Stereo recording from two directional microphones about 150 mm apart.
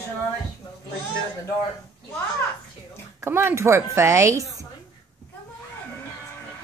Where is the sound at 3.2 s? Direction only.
15° right (ahead or behind).